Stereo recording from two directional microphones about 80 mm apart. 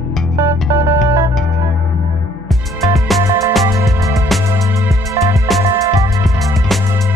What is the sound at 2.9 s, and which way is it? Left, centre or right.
Music, centre.